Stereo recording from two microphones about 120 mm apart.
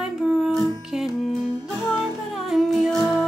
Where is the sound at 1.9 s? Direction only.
Centre (ahead or behind).